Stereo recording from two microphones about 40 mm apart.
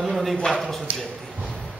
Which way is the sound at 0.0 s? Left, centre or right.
Centre.